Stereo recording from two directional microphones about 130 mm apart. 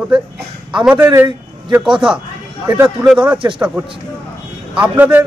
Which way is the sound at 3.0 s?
10° right (ahead or behind).